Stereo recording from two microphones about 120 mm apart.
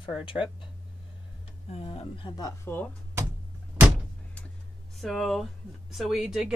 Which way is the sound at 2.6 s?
15° left (ahead or behind).